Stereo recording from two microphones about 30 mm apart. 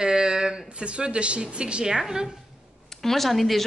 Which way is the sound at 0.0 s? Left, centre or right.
Right.